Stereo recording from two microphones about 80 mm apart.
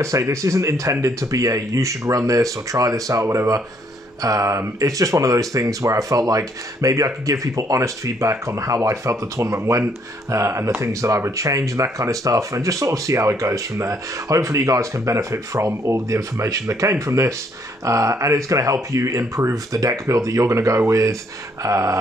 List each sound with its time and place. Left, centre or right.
0.0 s speech: right